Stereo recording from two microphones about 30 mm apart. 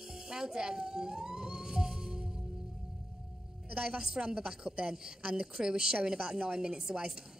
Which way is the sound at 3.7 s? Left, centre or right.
Right.